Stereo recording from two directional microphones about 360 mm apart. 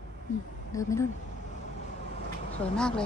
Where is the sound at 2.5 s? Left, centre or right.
Centre.